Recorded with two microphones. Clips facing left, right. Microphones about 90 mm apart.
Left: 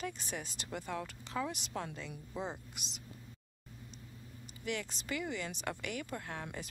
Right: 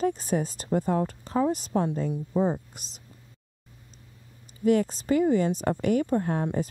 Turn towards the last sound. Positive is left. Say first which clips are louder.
# right 15 dB
turn(degrees=-40)  # may be behind; listen again after turning